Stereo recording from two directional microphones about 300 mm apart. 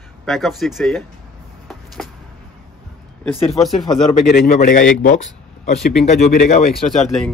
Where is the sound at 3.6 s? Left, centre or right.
Centre.